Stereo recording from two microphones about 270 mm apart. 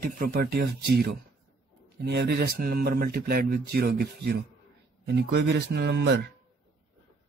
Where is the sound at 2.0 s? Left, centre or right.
Right.